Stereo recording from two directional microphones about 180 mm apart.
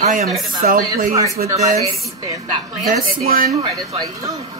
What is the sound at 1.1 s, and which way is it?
A woman's voice, 20° right (ahead or behind).